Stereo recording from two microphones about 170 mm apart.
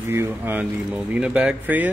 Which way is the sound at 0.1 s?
15° right (ahead or behind).